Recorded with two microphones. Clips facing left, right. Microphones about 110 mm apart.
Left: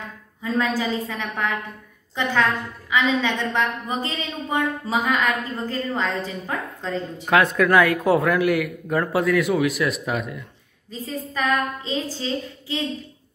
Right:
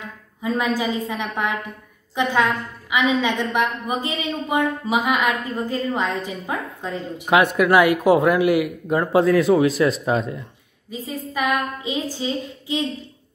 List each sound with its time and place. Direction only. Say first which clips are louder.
0.4 s a woman's voice: right 1 dB; 15° right (ahead or behind)
10.9 s a woman's voice: right 1 dB; 15° right (ahead or behind)